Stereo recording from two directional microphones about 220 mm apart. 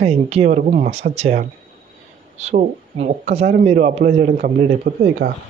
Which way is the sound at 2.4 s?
30° right (ahead or behind).